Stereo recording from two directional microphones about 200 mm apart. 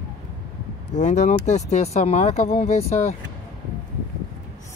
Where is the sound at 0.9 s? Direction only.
35° left (ahead or behind).